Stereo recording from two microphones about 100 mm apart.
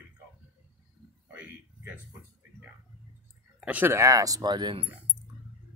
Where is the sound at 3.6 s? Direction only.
15° right (ahead or behind).